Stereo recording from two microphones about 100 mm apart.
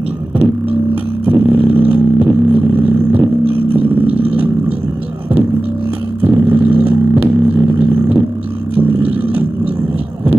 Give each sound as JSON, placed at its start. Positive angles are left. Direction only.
{"t": 1.2, "sound": "vehicle", "side_deg": -15}
{"t": 6.2, "sound": "music", "side_deg": -15}
{"t": 8.7, "sound": "a sound", "side_deg": -15}